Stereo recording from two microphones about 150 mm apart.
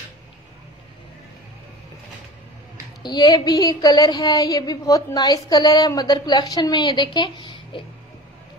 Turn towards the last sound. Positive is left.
turn(degrees=30)  # may be behind; listen again after turning